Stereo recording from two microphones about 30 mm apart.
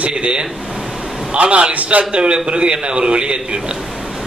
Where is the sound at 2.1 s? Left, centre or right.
Right.